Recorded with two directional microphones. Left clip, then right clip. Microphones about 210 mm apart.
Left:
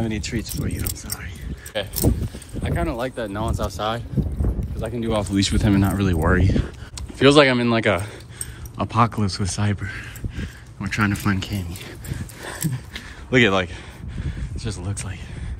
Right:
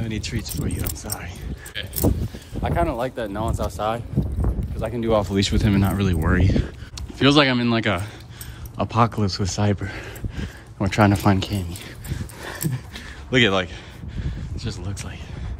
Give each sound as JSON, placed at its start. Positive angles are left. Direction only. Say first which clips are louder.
{"t": 0.0, "sound": "speech", "louder": "left 3 dB", "side_deg": -5}
{"t": 1.7, "sound": "speech", "louder": "left 4 dB", "side_deg": 10}
{"t": 2.6, "sound": "speech", "louder": "right 3 dB", "side_deg": -20}
{"t": 5.0, "sound": "speech", "louder": "right 3 dB", "side_deg": -30}
{"t": 5.5, "sound": "speech", "louder": "left 2 dB", "side_deg": 0}
{"t": 7.2, "sound": "speech", "louder": "left 3 dB", "side_deg": -10}
{"t": 10.3, "sound": "speech", "louder": "right 1 dB", "side_deg": -30}
{"t": 11.8, "sound": "a sound", "louder": "even", "side_deg": 0}